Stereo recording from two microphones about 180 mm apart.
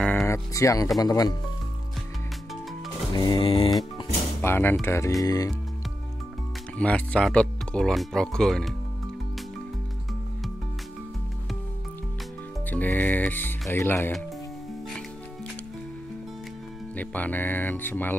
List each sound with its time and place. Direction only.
0.0 s music: 10° left (ahead or behind)
3.1 s music: 25° left (ahead or behind)
4.4 s speech: 10° left (ahead or behind)
4.8 s music: 15° left (ahead or behind)
6.8 s speech: 5° left (ahead or behind)
12.6 s speech: 10° left (ahead or behind)
16.9 s speech: 10° left (ahead or behind)